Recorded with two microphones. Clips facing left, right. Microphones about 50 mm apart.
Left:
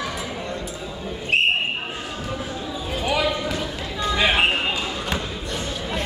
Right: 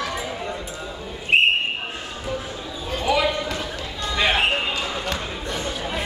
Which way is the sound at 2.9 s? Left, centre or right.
Centre.